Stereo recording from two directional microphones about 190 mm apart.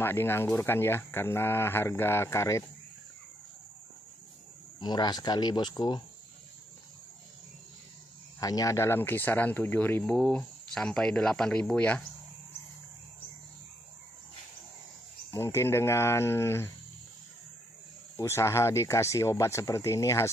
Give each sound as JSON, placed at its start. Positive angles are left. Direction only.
{"t": 0.0, "sound": "speech", "side_deg": 10}
{"t": 4.7, "sound": "speech", "side_deg": 25}
{"t": 8.4, "sound": "speech", "side_deg": 20}
{"t": 15.3, "sound": "speech", "side_deg": 15}
{"t": 18.1, "sound": "speech", "side_deg": 15}